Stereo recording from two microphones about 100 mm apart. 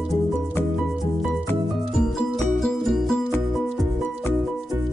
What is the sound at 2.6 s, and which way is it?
Music, 5° left (ahead or behind).